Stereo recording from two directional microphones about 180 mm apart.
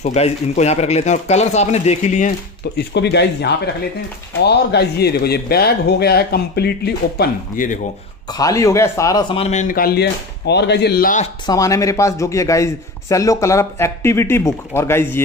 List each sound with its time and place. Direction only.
0.0 s speech: 35° left (ahead or behind)
2.8 s a man's voice: 70° left (ahead or behind); by 7.8 s 50° left (ahead or behind)
8.3 s a man's voice: 20° left (ahead or behind)
9.4 s a man's voice: 40° left (ahead or behind); by 11.1 s 60° left (ahead or behind)
11.4 s a man's voice: 20° left (ahead or behind)